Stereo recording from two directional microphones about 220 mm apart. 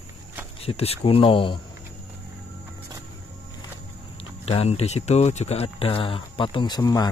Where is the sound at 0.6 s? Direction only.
25° left (ahead or behind).